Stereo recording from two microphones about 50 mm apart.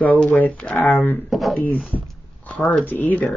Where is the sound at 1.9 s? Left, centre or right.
Left.